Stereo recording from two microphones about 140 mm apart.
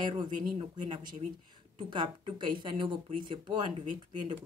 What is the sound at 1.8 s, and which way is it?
A woman's voice, 35° right (ahead or behind).